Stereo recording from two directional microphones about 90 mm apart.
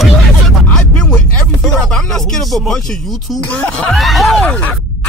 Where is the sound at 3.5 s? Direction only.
15° left (ahead or behind).